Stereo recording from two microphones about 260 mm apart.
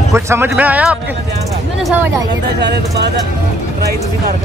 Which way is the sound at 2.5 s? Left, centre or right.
Right.